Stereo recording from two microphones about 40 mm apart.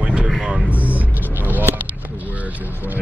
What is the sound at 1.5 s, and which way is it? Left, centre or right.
Speech, right.